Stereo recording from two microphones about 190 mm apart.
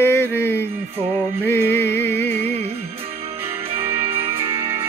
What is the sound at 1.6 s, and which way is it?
Music, 65° left (ahead or behind).